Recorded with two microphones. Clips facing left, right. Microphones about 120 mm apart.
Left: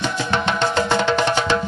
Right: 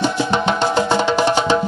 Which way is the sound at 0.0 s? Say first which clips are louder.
Right 4 dB; 15° right (ahead or behind).